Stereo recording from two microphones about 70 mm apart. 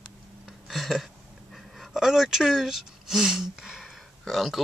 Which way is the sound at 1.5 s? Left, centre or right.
Centre.